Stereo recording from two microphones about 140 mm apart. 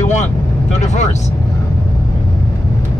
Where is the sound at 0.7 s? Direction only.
55° left (ahead or behind).